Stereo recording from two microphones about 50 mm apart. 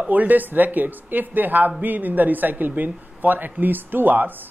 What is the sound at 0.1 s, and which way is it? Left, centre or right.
Speech, right.